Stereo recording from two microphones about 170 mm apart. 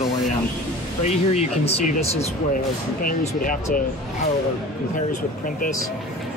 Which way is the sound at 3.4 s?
55° left (ahead or behind).